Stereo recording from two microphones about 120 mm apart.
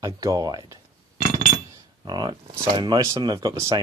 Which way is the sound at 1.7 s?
35° right (ahead or behind).